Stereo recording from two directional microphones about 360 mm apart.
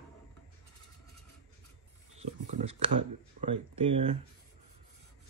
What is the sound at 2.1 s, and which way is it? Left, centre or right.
Speech, centre.